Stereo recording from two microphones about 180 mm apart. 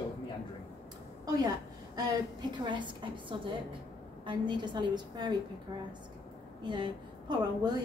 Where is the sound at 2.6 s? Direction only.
25° right (ahead or behind).